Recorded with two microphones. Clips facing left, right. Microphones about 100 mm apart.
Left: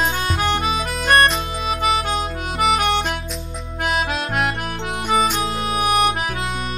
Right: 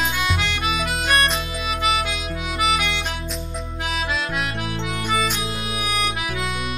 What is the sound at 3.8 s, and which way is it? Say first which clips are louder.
Music: left 4 dB; 50° left (ahead or behind).